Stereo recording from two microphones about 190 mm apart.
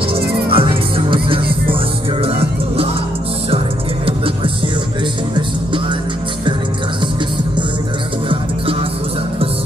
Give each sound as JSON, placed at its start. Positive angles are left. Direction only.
{"t": 0.5, "sound": "music", "side_deg": -25}
{"t": 3.4, "sound": "music", "side_deg": -30}